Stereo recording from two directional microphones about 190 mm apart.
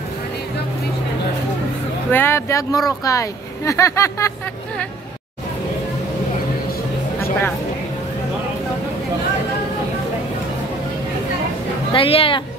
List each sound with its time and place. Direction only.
2.0 s speech: 10° left (ahead or behind)
11.9 s speech: 30° left (ahead or behind)